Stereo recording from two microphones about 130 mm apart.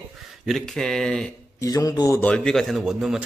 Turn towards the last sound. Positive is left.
turn(degrees=-5)  # may be behind; listen again after turning